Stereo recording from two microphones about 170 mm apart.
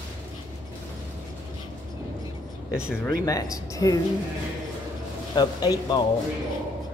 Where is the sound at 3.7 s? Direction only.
20° left (ahead or behind).